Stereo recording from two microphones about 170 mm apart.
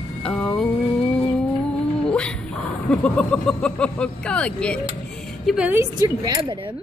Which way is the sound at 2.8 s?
5° left (ahead or behind).